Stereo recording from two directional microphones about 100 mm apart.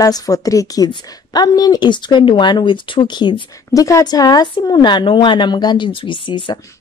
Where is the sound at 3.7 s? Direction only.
35° left (ahead or behind); by 6.6 s 55° left (ahead or behind).